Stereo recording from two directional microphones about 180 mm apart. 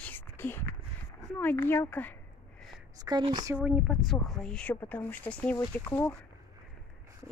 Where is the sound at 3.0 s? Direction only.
25° right (ahead or behind).